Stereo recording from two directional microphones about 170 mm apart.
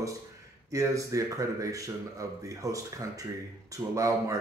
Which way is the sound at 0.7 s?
20° right (ahead or behind).